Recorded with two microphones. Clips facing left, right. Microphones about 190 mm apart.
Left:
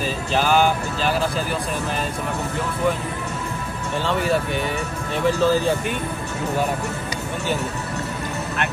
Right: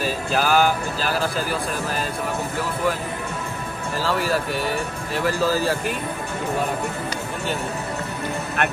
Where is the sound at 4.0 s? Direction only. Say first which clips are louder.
Left 1 dB; centre (ahead or behind).